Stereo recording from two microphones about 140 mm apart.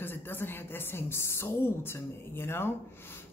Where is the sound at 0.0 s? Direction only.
15° left (ahead or behind).